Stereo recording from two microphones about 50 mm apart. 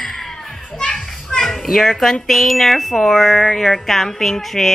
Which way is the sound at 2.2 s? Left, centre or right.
Centre.